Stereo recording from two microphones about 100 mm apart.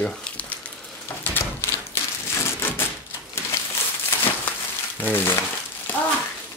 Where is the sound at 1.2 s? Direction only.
20° left (ahead or behind).